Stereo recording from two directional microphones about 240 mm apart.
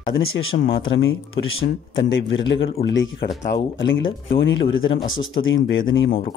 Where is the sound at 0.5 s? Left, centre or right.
Left.